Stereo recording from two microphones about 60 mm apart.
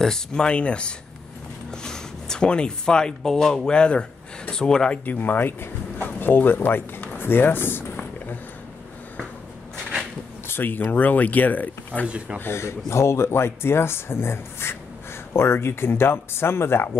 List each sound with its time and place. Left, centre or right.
0.0 s speech: centre
5.0 s speech: left
7.2 s a sound: left
10.5 s speech: left
12.4 s speech: left